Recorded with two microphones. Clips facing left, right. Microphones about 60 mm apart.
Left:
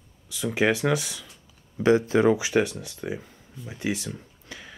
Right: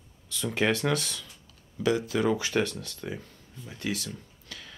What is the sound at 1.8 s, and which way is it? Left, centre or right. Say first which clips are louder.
Speech: left 6 dB; left.